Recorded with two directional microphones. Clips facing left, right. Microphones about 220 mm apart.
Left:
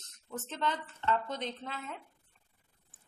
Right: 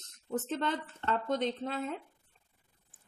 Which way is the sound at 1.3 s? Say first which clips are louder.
Right 7 dB; 45° right (ahead or behind).